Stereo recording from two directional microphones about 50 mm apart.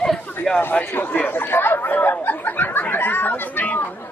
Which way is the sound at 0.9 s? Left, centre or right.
Left.